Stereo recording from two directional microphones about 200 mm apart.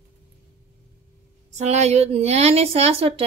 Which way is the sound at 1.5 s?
35° right (ahead or behind).